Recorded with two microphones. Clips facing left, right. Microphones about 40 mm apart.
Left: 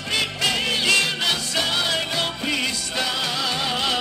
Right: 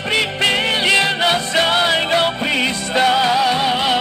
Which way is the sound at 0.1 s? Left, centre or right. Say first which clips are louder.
Right 6 dB; right.